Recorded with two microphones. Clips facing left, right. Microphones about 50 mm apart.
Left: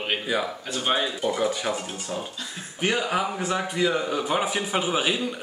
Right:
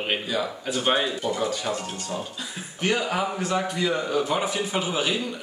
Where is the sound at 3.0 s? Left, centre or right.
Centre.